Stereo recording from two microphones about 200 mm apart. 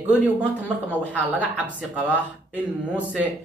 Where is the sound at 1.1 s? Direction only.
5° right (ahead or behind).